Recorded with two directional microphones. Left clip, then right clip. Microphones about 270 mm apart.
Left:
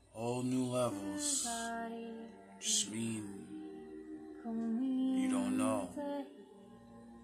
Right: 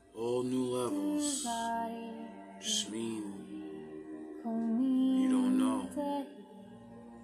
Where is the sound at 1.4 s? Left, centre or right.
Right.